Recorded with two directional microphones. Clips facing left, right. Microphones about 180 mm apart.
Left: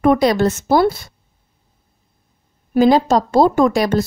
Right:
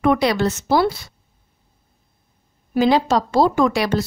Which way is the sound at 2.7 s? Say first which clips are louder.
Left 4 dB; 50° left (ahead or behind).